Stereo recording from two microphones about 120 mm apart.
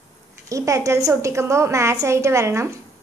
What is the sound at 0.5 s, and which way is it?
A woman's voice, 25° right (ahead or behind).